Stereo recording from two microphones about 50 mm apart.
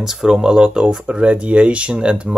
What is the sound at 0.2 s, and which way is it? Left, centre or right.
Speech, centre.